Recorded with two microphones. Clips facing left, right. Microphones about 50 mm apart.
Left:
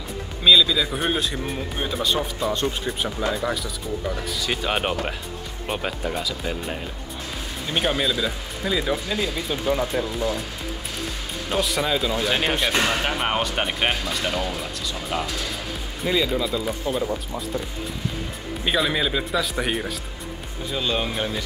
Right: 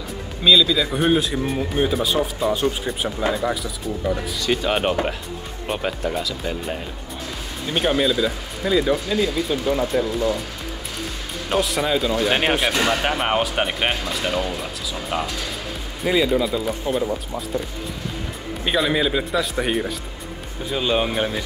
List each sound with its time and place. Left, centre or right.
0.4 s speech: centre
11.5 s speech: centre
12.3 s speech: right
12.9 s speech: centre
20.7 s speech: centre